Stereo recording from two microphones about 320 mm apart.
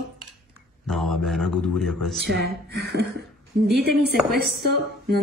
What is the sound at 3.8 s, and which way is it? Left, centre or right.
A woman's voice, right.